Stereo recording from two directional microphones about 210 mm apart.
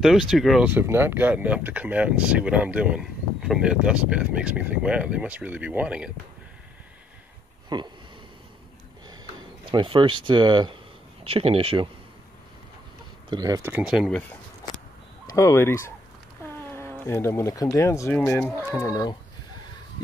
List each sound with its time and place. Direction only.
0.0 s speech: centre (ahead or behind)
7.7 s speech: 20° right (ahead or behind)
9.7 s speech: 25° right (ahead or behind)
13.3 s speech: 15° right (ahead or behind); by 14.2 s centre (ahead or behind)
15.3 s speech: 15° left (ahead or behind)
18.8 s speech: 15° left (ahead or behind)